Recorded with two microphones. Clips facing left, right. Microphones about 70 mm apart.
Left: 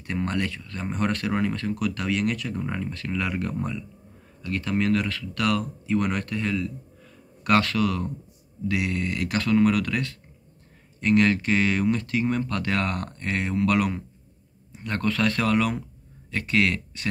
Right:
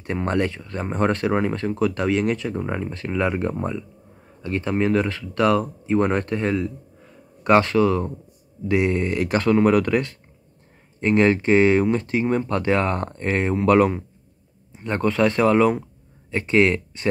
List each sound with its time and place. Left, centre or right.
0.0 s speech: right